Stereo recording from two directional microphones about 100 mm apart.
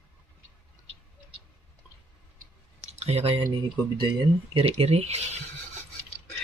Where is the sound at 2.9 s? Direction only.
90° right.